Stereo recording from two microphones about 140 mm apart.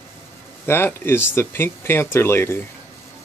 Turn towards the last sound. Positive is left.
turn(degrees=15)  # may be behind; listen again after turning